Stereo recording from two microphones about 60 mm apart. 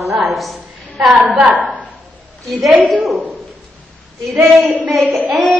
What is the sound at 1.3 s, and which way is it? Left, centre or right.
Speech, centre.